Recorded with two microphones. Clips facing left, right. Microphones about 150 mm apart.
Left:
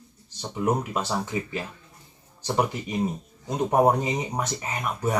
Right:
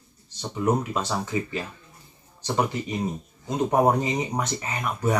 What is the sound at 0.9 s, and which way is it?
Speech, 10° left (ahead or behind).